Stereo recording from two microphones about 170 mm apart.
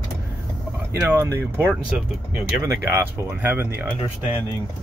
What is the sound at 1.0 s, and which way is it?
Speech, 15° right (ahead or behind).